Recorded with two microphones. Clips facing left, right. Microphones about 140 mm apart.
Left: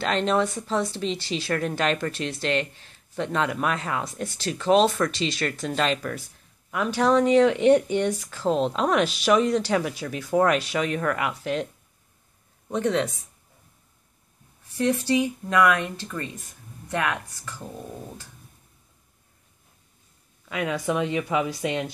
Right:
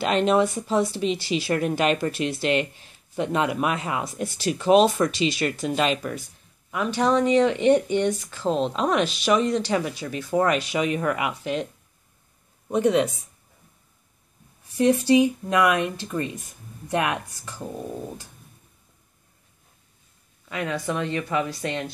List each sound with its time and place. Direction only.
0.0 s speech: 10° right (ahead or behind)
12.6 s speech: 10° right (ahead or behind)
14.8 s speech: 15° right (ahead or behind)
20.4 s speech: 5° left (ahead or behind)